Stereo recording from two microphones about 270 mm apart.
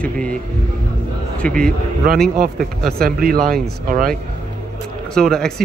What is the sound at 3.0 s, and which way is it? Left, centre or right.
A man's voice, right.